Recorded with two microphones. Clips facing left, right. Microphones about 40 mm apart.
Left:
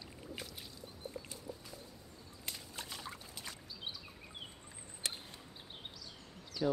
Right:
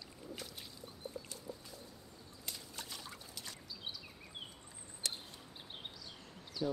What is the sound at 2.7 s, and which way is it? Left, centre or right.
Trickle, left.